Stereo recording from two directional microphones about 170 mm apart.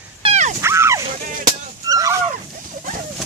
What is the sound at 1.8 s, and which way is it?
Dog, 20° right (ahead or behind).